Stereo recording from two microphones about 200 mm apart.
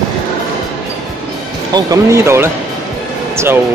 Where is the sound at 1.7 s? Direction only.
15° right (ahead or behind).